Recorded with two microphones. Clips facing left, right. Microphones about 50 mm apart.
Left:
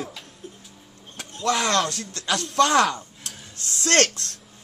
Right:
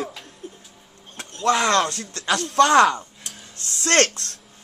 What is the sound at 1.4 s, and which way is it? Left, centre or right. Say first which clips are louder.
A man's voice: right 3 dB; right.